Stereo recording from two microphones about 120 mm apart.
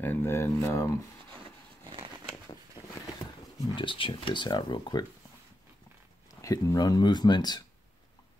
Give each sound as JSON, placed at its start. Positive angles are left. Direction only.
{"t": 0.0, "sound": "speech", "side_deg": 15}
{"t": 2.4, "sound": "speech", "side_deg": 30}
{"t": 6.4, "sound": "speech", "side_deg": 30}